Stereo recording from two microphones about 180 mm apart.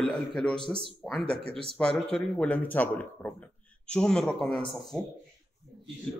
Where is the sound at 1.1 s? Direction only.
5° left (ahead or behind).